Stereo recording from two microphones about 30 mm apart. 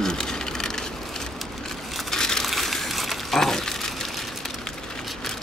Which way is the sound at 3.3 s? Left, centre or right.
Centre.